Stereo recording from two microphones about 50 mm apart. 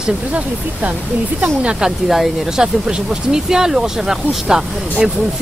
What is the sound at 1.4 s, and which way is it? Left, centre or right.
Speech, right.